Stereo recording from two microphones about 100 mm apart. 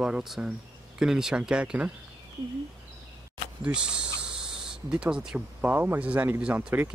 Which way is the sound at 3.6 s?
10° right (ahead or behind).